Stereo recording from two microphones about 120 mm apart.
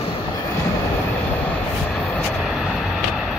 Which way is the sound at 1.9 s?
5° left (ahead or behind).